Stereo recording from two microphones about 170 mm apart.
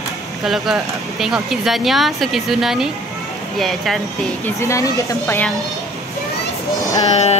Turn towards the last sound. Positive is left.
turn(degrees=40)  # may be behind; listen again after turning